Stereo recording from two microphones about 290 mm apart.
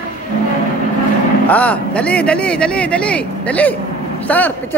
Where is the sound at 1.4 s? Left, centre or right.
Centre.